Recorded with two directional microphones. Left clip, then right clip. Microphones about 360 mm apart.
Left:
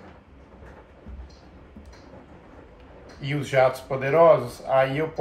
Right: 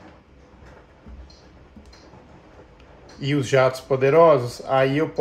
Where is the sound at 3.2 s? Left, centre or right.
Right.